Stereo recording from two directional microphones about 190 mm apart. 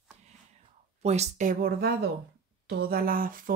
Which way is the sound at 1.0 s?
35° right (ahead or behind).